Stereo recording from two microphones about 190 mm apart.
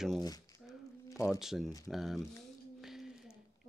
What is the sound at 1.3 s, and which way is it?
Speech, centre (ahead or behind).